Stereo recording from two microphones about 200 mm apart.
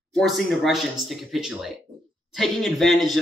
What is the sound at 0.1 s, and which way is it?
Speech, centre (ahead or behind).